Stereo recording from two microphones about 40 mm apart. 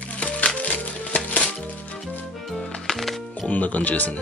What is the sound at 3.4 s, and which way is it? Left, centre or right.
Speech, left.